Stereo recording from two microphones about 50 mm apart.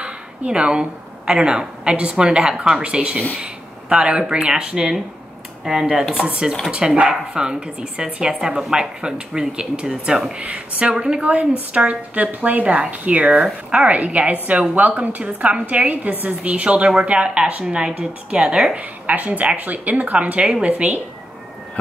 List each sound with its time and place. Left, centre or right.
0.0 s speech: right
6.2 s a woman's voice: centre
18.8 s a woman's voice: right